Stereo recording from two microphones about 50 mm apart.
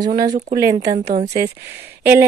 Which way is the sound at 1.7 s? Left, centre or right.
Right.